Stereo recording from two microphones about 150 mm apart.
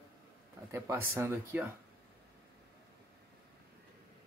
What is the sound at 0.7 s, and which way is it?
Speech, 15° right (ahead or behind).